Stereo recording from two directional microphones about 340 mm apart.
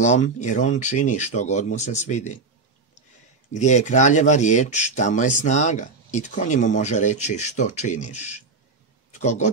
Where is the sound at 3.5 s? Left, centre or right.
Left.